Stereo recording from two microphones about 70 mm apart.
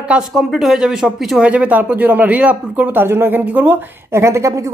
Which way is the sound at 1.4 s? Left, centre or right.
Right.